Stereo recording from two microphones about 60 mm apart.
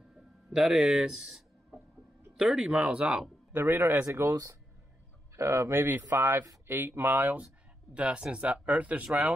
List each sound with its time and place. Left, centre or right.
0.1 s speech: centre
3.5 s speech: right
4.0 s speech: right
7.9 s speech: centre